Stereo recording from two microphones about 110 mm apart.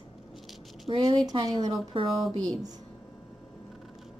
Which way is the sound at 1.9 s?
55° right (ahead or behind).